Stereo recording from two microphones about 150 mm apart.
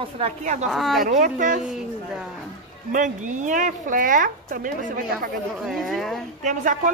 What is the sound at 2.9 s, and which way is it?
A woman's voice, 55° right (ahead or behind).